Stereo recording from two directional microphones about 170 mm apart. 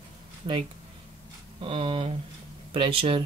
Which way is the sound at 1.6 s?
30° right (ahead or behind).